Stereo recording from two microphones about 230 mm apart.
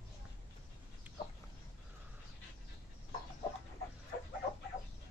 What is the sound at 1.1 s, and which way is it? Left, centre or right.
Chicken, centre.